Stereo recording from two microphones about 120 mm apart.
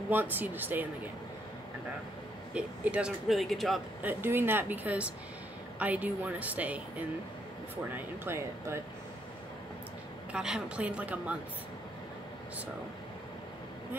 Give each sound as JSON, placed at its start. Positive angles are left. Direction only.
{"t": 0.1, "sound": "speech", "side_deg": -15}
{"t": 2.5, "sound": "speech", "side_deg": -10}
{"t": 4.0, "sound": "speech", "side_deg": -15}
{"t": 7.9, "sound": "speech", "side_deg": -20}
{"t": 10.3, "sound": "speech", "side_deg": -5}